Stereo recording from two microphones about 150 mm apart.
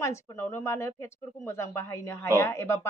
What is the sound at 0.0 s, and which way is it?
A woman's voice, 20° left (ahead or behind).